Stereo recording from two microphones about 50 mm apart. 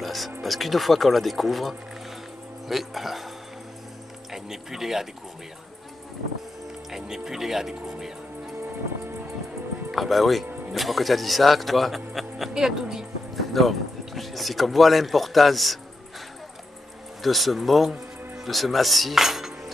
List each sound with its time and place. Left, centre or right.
0.0 s speech: centre
4.3 s speech: centre
6.9 s speech: centre
8.6 s music: right
9.8 s speech: centre
13.4 s speech: centre
17.2 s speech: centre
18.4 s cutlery: centre